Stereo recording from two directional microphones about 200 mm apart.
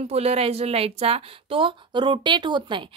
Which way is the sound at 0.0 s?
30° right (ahead or behind).